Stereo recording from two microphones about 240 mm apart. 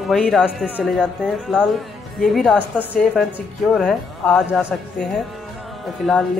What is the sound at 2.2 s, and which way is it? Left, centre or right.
Speech, centre.